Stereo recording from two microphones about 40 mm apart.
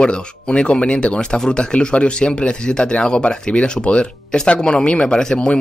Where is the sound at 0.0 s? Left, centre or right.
Left.